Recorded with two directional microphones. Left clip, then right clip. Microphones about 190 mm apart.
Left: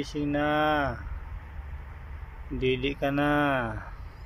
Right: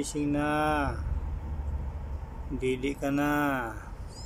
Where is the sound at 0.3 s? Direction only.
Centre (ahead or behind).